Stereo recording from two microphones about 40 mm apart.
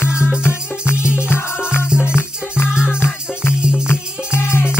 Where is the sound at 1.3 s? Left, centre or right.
Left.